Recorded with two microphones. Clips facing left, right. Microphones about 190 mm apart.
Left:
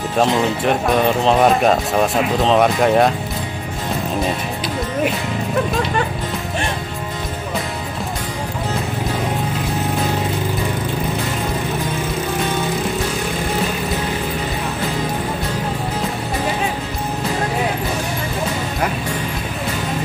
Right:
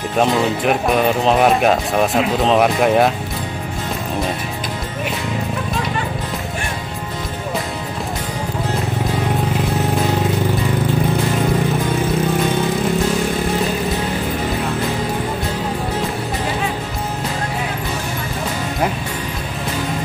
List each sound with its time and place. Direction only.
0.2 s speech: 5° right (ahead or behind)